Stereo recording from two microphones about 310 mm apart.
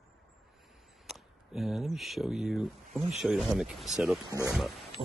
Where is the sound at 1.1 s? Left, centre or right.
Centre.